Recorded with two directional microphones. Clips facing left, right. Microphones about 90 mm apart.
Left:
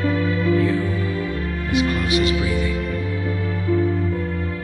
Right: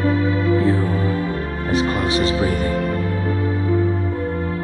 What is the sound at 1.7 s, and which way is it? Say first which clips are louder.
Speech: right 1 dB; 35° right (ahead or behind).